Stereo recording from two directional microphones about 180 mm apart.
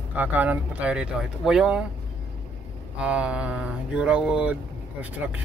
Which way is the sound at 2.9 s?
5° right (ahead or behind).